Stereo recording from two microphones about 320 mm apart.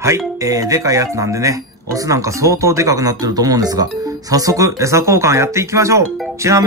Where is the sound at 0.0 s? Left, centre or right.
Centre.